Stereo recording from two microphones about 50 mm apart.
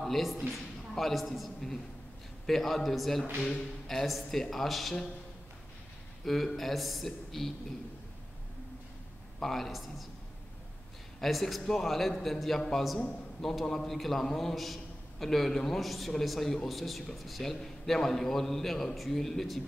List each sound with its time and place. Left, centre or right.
0.0 s a man's voice: centre
3.3 s a man's voice: left
3.8 s a man's voice: centre
6.2 s a man's voice: centre
9.4 s a man's voice: centre
11.1 s a man's voice: centre